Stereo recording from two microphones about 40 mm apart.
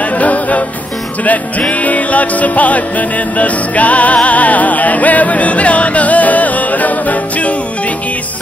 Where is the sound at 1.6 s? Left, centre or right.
Left.